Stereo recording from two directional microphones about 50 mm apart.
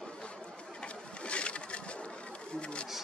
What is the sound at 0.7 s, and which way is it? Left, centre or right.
Pigeon, left.